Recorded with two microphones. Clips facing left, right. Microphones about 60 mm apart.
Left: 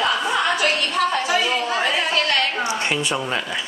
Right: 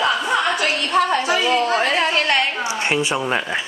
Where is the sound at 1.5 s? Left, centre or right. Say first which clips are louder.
Right 4 dB; right.